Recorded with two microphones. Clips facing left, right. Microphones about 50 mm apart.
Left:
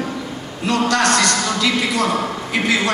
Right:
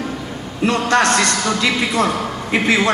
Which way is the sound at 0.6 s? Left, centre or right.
Right.